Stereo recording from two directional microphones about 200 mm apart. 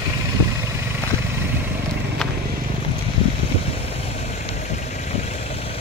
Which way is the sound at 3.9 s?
30° left (ahead or behind).